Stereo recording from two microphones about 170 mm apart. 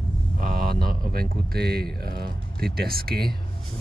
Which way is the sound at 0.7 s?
65° right (ahead or behind).